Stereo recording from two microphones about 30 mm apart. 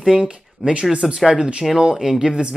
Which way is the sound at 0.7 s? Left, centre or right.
Right.